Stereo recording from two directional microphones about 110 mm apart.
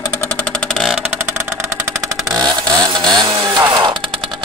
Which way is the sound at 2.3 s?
35° right (ahead or behind).